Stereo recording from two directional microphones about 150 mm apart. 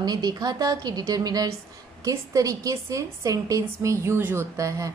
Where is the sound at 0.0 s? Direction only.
25° right (ahead or behind).